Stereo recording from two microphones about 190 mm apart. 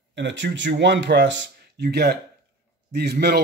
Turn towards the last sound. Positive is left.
turn(degrees=-55)  # may be behind; listen again after turning